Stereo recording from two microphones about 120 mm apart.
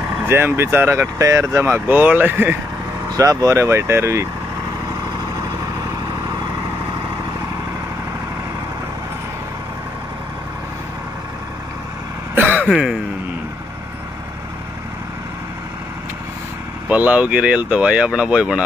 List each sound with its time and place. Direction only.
0.2 s speech: 20° right (ahead or behind)
3.1 s speech: 30° right (ahead or behind)
12.4 s throat clearing: 15° right (ahead or behind)
12.6 s throat clearing: 5° right (ahead or behind)
16.9 s speech: 10° right (ahead or behind)